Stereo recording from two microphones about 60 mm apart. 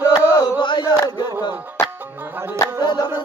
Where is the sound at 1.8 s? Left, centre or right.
Left.